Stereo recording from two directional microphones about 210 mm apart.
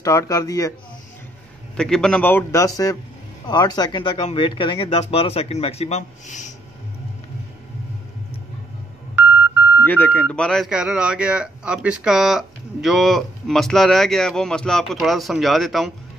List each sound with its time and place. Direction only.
0.0 s a man's voice: 15° left (ahead or behind)
1.8 s a man's voice: 5° left (ahead or behind); by 6.5 s 35° left (ahead or behind)
9.3 s a sound: 10° right (ahead or behind)
9.8 s a man's voice: 10° left (ahead or behind)